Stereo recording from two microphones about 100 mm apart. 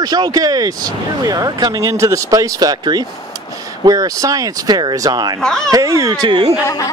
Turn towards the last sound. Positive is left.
turn(degrees=-55)  # may be behind; listen again after turning